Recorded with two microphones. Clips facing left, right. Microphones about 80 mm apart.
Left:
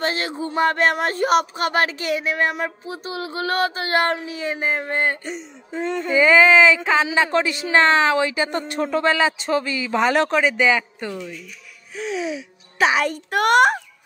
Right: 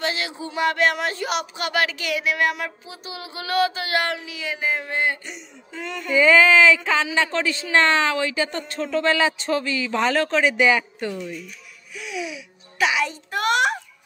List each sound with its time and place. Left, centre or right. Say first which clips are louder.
0.0 s speech: left 3 dB; left
6.1 s speech: left 1 dB; centre
9.0 s speech: even; centre
10.4 s a man's voice: even; centre
12.0 s speech: left 6 dB; left
13.0 s a child's voice: left 4 dB; left